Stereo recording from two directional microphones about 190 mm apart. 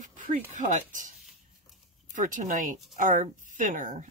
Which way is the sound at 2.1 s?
45° right (ahead or behind).